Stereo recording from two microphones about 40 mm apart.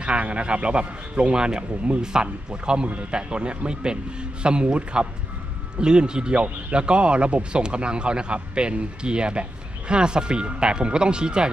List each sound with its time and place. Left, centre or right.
0.0 s speech: right